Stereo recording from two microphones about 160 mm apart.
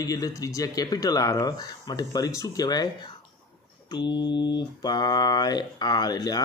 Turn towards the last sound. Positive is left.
turn(degrees=25)  # may be behind; listen again after turning